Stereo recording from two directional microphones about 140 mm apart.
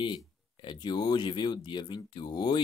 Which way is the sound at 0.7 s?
30° left (ahead or behind).